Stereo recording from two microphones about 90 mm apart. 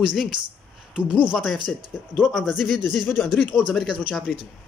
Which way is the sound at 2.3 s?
Centre (ahead or behind).